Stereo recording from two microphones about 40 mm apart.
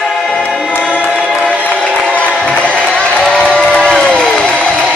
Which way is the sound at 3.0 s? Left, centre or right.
Left.